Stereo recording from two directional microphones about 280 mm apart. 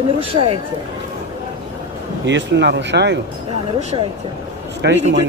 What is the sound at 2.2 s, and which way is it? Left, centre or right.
Speech, right.